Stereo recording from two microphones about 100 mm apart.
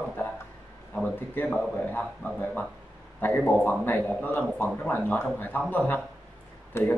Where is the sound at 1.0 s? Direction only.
20° left (ahead or behind).